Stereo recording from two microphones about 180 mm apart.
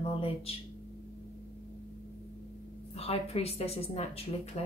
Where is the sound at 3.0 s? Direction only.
35° left (ahead or behind).